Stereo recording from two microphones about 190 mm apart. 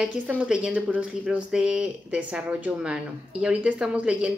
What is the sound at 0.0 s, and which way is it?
Speech, 5° right (ahead or behind).